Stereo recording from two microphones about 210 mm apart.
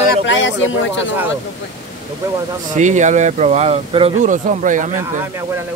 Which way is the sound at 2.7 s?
35° right (ahead or behind).